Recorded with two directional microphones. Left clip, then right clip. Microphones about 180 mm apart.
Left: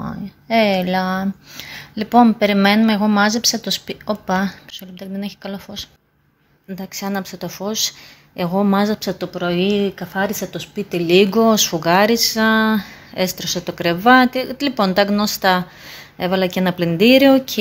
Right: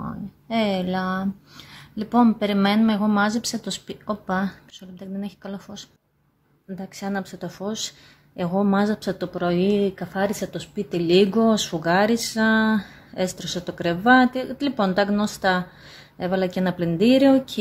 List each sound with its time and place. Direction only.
0.0 s speech: 20° left (ahead or behind)